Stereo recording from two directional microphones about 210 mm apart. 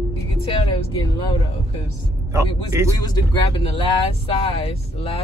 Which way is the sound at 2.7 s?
15° right (ahead or behind).